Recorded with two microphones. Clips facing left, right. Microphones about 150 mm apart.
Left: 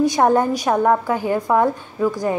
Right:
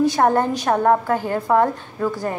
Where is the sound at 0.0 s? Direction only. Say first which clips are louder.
Left 1 dB; 15° left (ahead or behind).